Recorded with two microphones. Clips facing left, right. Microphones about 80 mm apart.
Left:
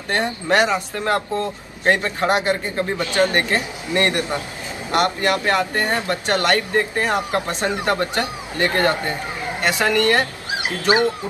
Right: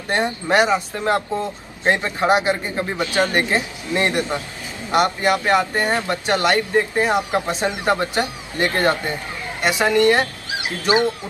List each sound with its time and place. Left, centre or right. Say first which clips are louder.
0.1 s speech: right 1 dB; centre
9.6 s speech: right 2 dB; centre